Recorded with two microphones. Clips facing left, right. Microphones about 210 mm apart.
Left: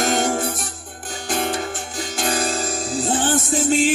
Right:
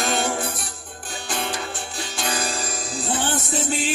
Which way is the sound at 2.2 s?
45° left (ahead or behind).